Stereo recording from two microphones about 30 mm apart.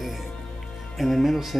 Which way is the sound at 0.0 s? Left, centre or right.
Centre.